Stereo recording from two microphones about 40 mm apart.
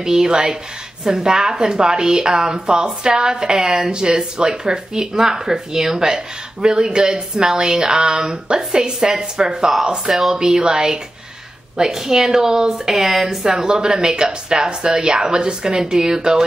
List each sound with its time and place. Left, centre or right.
0.0 s a woman's voice: centre
10.1 s speech: centre
10.4 s a woman's voice: centre